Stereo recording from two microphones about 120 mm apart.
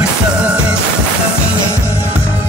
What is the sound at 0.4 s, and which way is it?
Music, 10° right (ahead or behind).